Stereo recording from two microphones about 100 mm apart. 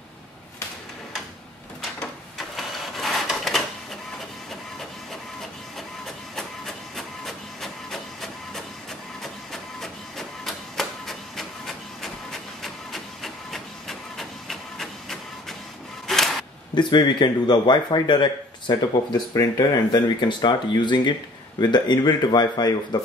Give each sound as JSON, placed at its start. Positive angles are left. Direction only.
{"t": 2.3, "sound": "printer", "side_deg": 0}
{"t": 5.4, "sound": "printer", "side_deg": 5}
{"t": 16.1, "sound": "a sound", "side_deg": 5}
{"t": 16.7, "sound": "speech", "side_deg": 50}
{"t": 19.3, "sound": "speech", "side_deg": 35}